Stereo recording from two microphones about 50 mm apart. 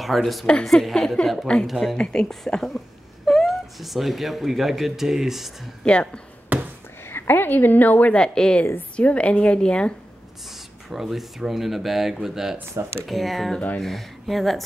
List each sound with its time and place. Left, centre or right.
0.0 s a woman's voice: centre
0.9 s speech: centre
1.7 s speech: centre
2.0 s speech: centre
3.3 s speech: centre
5.9 s a woman's voice: left
6.5 s a sound: right
7.1 s a woman's voice: left
8.1 s a woman's voice: centre
10.9 s speech: centre
13.0 s speech: centre